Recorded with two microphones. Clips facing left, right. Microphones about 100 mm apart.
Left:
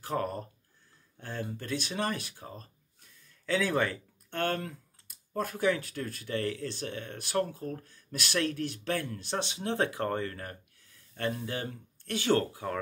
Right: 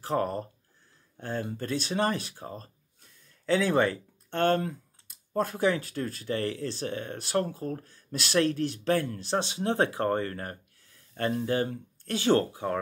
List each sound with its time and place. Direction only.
0.0 s speech: 35° right (ahead or behind)